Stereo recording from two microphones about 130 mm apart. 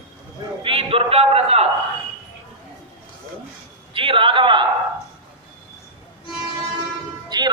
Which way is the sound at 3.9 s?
40° right (ahead or behind).